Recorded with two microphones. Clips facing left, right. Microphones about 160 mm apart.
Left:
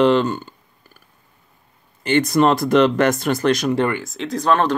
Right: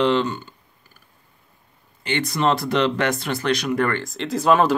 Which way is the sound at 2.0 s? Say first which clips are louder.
Left 6 dB; 45° left (ahead or behind).